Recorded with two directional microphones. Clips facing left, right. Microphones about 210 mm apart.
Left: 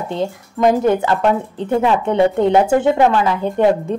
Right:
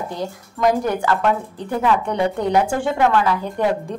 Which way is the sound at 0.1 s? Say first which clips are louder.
Left 6 dB; 25° left (ahead or behind).